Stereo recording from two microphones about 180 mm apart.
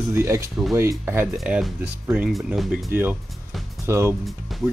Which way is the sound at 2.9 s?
10° right (ahead or behind).